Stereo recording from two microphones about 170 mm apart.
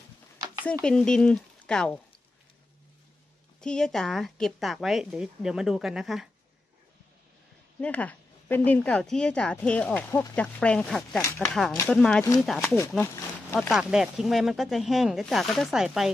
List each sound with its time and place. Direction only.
0.8 s speech: 5° left (ahead or behind)
3.6 s a woman's voice: 5° left (ahead or behind)
7.8 s a woman's voice: 10° left (ahead or behind)
12.5 s speech: 15° left (ahead or behind)
13.0 s a sound: 15° left (ahead or behind)
13.6 s a woman's voice: centre (ahead or behind)